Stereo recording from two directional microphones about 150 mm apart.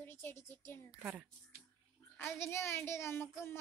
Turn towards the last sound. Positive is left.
turn(degrees=15)  # may be behind; listen again after turning